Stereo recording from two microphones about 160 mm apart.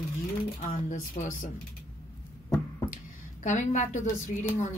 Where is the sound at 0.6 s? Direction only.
55° left (ahead or behind).